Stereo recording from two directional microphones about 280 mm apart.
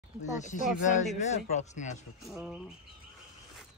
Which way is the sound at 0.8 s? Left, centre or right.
Left.